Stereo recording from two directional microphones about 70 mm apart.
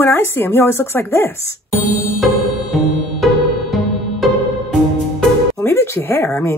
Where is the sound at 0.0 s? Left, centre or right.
Left.